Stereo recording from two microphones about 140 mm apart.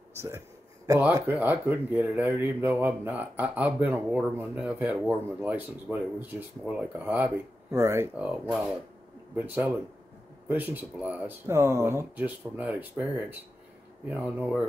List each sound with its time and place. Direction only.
0.1 s speech: 20° right (ahead or behind)
8.3 s speech: 5° right (ahead or behind)
9.3 s speech: 15° right (ahead or behind)